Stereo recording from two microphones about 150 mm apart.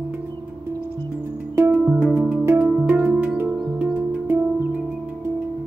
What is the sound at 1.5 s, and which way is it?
Music, 15° right (ahead or behind).